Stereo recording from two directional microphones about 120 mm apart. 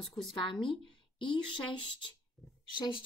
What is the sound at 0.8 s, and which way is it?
Speech, 40° left (ahead or behind).